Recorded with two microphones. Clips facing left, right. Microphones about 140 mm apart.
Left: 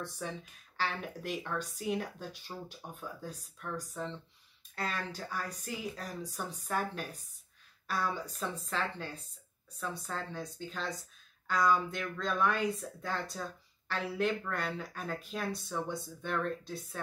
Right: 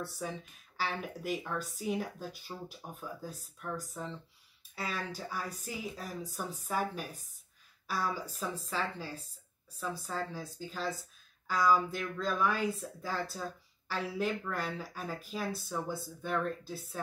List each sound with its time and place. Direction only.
0.0 s speech: 5° right (ahead or behind)